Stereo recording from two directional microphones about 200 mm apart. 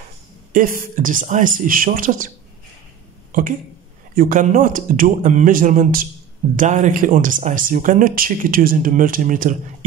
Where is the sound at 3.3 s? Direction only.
40° right (ahead or behind).